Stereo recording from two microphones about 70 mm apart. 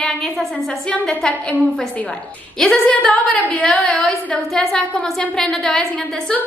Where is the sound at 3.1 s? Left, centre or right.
Centre.